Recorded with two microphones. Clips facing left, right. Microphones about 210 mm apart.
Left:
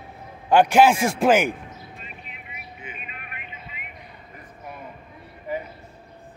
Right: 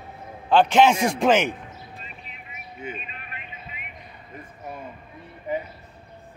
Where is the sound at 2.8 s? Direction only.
35° right (ahead or behind).